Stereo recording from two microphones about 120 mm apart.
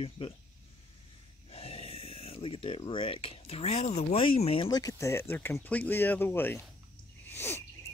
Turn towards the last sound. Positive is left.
turn(degrees=20)  # may be behind; listen again after turning